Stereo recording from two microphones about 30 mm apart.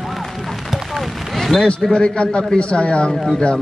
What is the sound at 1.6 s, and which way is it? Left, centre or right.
A man's voice, left.